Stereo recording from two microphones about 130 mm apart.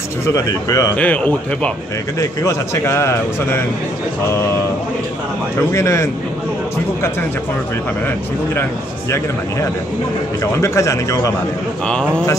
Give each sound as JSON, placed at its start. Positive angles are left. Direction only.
{"t": 0.3, "sound": "a man's voice", "side_deg": 25}
{"t": 0.9, "sound": "speech", "side_deg": 10}
{"t": 2.1, "sound": "a man's voice", "side_deg": 20}
{"t": 5.7, "sound": "a man's voice", "side_deg": 20}
{"t": 10.4, "sound": "a man's voice", "side_deg": 20}
{"t": 11.9, "sound": "speech", "side_deg": 5}